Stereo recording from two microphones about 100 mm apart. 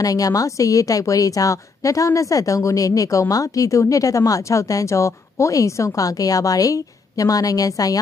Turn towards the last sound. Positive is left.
turn(degrees=35)  # may be behind; listen again after turning